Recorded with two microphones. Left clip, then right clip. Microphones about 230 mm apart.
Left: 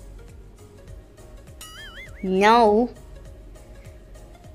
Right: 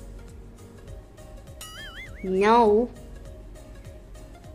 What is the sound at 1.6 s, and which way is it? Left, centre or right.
Music, centre.